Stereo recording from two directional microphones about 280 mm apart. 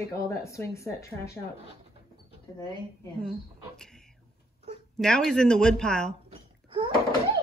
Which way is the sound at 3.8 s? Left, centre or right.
Centre.